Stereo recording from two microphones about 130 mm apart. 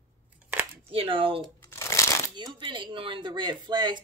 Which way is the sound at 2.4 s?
35° right (ahead or behind).